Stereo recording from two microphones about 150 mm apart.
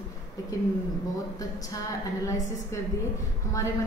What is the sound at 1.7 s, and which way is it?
Speech, 20° left (ahead or behind).